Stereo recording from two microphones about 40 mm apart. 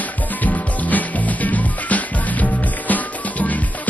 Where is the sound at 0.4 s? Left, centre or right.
Left.